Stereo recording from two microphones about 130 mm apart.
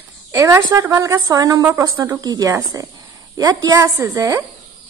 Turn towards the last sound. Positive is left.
turn(degrees=-25)  # may be behind; listen again after turning